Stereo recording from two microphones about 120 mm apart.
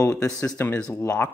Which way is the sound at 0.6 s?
10° left (ahead or behind).